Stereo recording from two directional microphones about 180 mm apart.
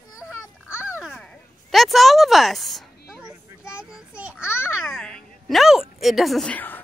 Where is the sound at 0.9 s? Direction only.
Centre (ahead or behind).